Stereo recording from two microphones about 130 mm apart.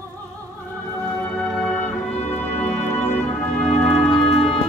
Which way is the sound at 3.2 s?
5° left (ahead or behind).